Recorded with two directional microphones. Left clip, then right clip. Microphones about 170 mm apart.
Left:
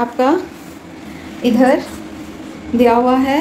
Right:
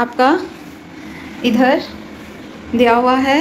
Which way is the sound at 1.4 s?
15° left (ahead or behind).